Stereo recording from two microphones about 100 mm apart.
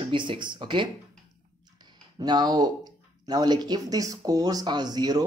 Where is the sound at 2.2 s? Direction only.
45° right (ahead or behind).